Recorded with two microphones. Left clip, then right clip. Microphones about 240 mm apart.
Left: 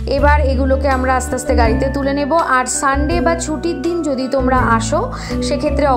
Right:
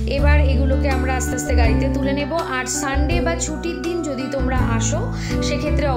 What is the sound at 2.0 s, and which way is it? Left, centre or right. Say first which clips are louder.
Speech: left 6 dB; centre.